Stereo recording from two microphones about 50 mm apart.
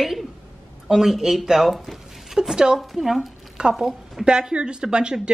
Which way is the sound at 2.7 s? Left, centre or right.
Centre.